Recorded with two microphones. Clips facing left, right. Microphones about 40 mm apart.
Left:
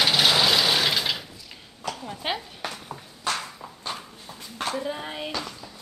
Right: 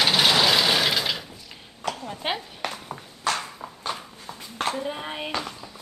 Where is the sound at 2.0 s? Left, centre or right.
Centre.